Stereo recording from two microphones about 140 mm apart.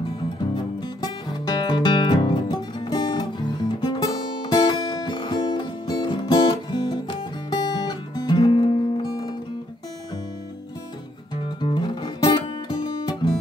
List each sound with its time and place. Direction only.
0.4 s music: 30° left (ahead or behind)
11.4 s music: 35° left (ahead or behind)